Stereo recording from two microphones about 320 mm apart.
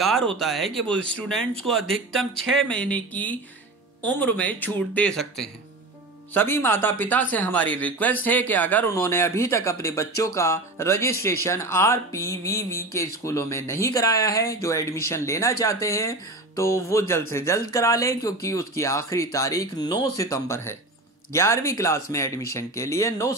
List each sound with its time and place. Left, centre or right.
0.0 s speech: centre